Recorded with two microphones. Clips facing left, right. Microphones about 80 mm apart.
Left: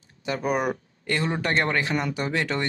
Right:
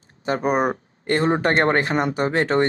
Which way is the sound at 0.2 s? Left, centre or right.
Right.